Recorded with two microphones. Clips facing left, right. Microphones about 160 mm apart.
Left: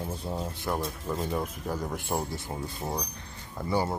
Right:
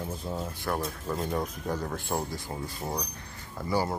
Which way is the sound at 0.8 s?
Centre (ahead or behind).